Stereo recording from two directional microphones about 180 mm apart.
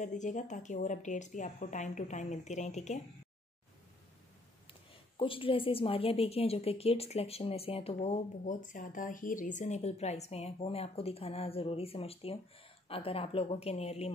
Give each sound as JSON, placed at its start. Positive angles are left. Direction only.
{"t": 0.0, "sound": "speech", "side_deg": 40}
{"t": 5.2, "sound": "a woman's voice", "side_deg": 30}